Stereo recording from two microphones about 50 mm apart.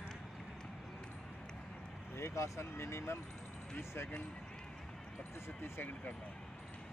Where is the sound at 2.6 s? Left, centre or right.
Left.